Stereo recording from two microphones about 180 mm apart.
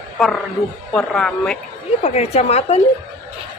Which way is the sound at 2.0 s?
35° left (ahead or behind).